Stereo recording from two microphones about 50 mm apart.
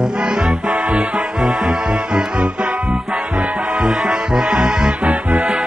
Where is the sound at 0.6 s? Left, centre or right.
Right.